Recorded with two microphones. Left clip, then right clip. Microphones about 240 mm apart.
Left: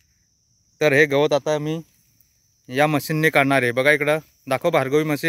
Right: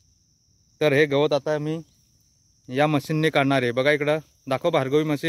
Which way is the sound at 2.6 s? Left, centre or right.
Centre.